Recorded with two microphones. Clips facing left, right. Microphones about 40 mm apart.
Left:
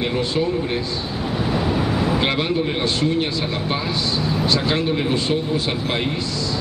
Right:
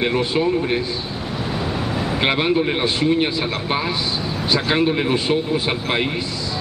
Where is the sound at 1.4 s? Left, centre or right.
Centre.